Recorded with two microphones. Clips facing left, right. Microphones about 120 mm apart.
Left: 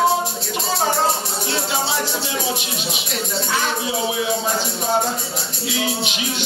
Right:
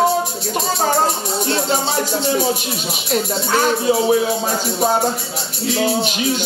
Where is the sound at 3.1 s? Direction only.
45° right (ahead or behind).